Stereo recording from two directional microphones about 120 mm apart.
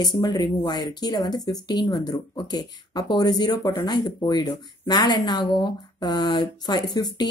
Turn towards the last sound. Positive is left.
turn(degrees=35)  # may be behind; listen again after turning